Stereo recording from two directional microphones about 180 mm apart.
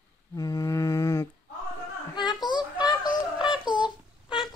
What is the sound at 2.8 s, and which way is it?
Synthetic singing, 25° left (ahead or behind).